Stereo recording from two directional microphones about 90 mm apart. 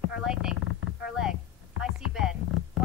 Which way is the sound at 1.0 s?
5° right (ahead or behind).